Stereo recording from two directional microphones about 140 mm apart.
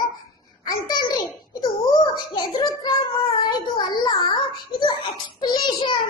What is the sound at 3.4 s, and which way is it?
Child singing, 30° left (ahead or behind).